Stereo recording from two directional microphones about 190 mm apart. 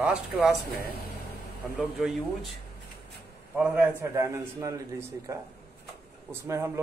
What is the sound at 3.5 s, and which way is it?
A man's voice, 10° right (ahead or behind).